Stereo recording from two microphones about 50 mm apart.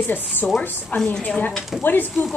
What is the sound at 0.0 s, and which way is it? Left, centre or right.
Speech, left.